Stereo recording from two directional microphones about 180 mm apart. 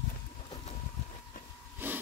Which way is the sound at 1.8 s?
10° right (ahead or behind).